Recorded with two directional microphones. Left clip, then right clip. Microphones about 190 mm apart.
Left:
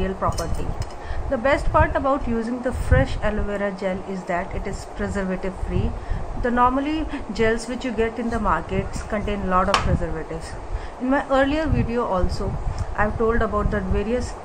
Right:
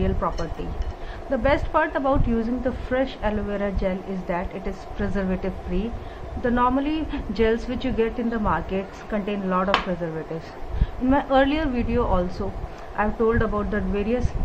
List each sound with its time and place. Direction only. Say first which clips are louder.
0.0 s a sound: left 2 dB; 30° right (ahead or behind)
1.3 s a woman's voice: left 2 dB; 25° right (ahead or behind)
11.1 s a woman's voice: even; 30° right (ahead or behind)